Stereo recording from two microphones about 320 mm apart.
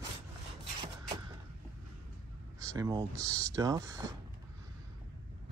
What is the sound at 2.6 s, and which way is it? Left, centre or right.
Speech, centre.